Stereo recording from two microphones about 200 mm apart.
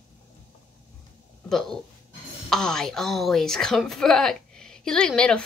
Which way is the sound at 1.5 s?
Centre (ahead or behind).